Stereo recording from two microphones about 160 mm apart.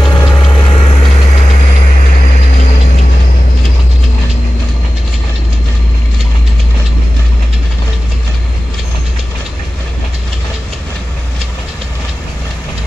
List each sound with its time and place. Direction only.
0.0 s vehicle: 25° left (ahead or behind); by 2.7 s 60° left (ahead or behind)